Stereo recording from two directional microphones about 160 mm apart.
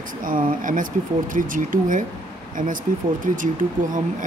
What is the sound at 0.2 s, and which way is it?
Speech, 60° right (ahead or behind).